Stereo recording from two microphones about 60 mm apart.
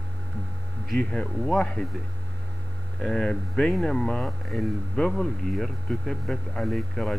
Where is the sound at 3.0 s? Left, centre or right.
Centre.